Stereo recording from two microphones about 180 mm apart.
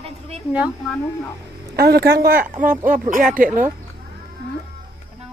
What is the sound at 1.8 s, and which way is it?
Speech, 60° right (ahead or behind).